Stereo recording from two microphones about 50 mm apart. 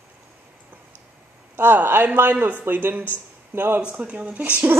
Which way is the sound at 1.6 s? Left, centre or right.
Right.